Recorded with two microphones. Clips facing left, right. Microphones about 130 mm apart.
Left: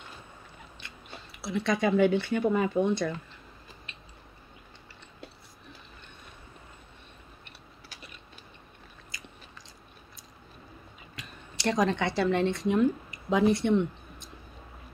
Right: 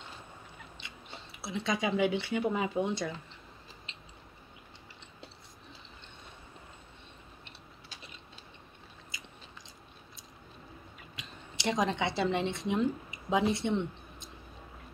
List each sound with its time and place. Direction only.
1.1 s speech: 20° right (ahead or behind)
2.9 s speech: 55° left (ahead or behind)
3.9 s a sound: 20° right (ahead or behind)
7.4 s chewing: 20° right (ahead or behind)
9.1 s biting: 20° right (ahead or behind)
11.1 s speech: 20° right (ahead or behind)